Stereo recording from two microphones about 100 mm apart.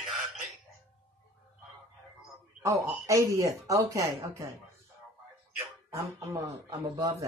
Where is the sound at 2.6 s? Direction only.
30° right (ahead or behind).